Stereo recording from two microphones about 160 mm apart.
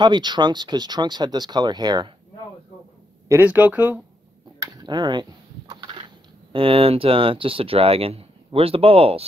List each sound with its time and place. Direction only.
0.0 s speech: 30° right (ahead or behind)
3.3 s speech: 10° right (ahead or behind)
4.6 s a sound: 25° right (ahead or behind)
6.5 s speech: 35° right (ahead or behind)